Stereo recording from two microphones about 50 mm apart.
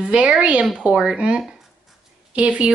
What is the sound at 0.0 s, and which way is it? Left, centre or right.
Speech, centre.